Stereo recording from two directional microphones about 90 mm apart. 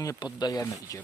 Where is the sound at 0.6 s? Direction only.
40° left (ahead or behind).